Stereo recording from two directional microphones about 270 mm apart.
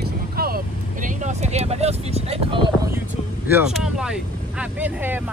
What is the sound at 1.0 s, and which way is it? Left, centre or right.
Speech, right.